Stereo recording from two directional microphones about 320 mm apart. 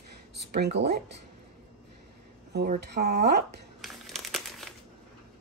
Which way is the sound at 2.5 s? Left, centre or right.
Right.